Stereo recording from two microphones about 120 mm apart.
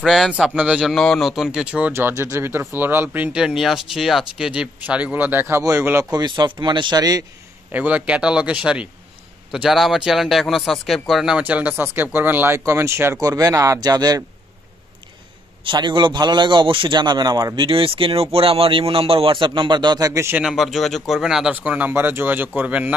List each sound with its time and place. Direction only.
0.0 s speech: centre (ahead or behind)
0.9 s speech: 5° left (ahead or behind)
1.9 s speech: 20° right (ahead or behind)
6.1 s speech: 40° right (ahead or behind)
7.7 s speech: 15° right (ahead or behind); by 14.2 s 35° right (ahead or behind)
15.6 s a man's voice: 40° right (ahead or behind); by 20.4 s 20° right (ahead or behind)
20.4 s speech: centre (ahead or behind)